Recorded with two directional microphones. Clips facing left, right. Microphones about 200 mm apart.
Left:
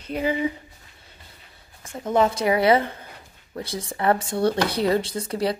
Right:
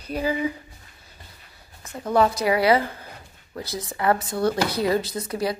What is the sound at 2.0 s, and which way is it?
Speech, 20° left (ahead or behind).